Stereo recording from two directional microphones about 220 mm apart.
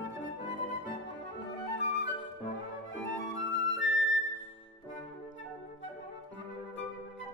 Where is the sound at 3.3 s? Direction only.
60° left (ahead or behind).